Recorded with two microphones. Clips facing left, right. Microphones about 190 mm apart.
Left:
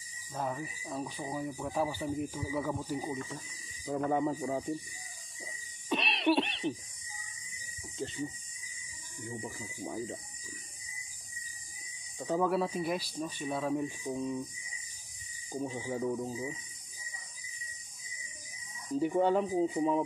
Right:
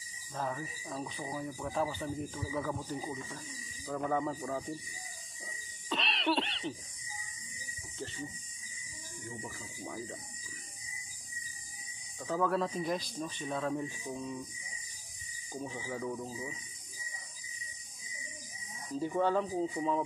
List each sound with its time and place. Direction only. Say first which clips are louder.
0.3 s speech: left 1 dB; 10° left (ahead or behind)
5.9 s cough: left 4 dB; 15° left (ahead or behind)
9.8 s speech: left 4 dB; 20° left (ahead or behind)
12.2 s speech: left 2 dB; 15° left (ahead or behind)
15.5 s speech: left 4 dB; 20° left (ahead or behind)
16.2 s speech: left 4 dB; centre (ahead or behind)
18.9 s speech: left 3 dB; 15° left (ahead or behind)